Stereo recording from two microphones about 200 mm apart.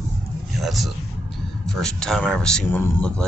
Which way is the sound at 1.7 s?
5° left (ahead or behind).